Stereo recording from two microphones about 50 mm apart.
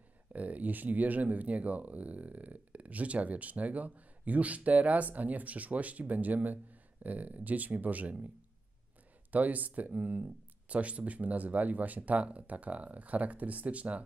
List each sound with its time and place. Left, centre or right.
0.3 s speech: right
9.3 s speech: right